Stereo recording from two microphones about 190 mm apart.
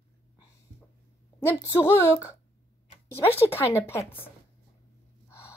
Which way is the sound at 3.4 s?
10° left (ahead or behind).